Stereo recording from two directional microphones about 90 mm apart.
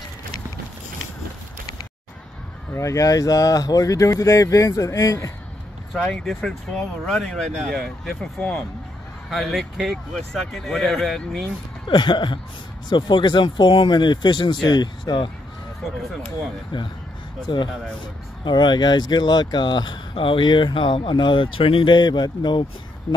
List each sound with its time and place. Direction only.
2.7 s speech: 35° left (ahead or behind)
6.0 s speech: 10° left (ahead or behind)
9.3 s speech: centre (ahead or behind)
11.9 s speech: 55° left (ahead or behind)
16.7 s speech: 60° left (ahead or behind)